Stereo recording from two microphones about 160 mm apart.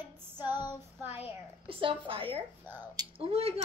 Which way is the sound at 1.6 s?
35° right (ahead or behind).